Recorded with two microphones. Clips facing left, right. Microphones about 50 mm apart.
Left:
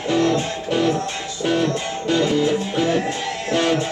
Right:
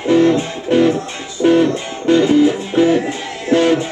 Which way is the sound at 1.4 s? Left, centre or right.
Centre.